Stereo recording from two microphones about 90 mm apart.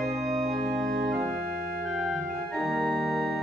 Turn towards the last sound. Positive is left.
turn(degrees=0)  # may be behind; listen again after turning